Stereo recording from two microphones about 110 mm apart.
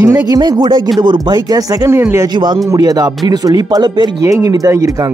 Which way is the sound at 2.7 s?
35° right (ahead or behind).